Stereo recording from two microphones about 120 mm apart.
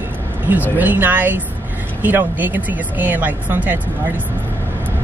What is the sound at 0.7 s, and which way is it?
Speech, 15° right (ahead or behind).